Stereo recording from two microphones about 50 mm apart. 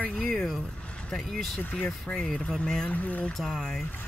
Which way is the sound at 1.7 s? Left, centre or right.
Centre.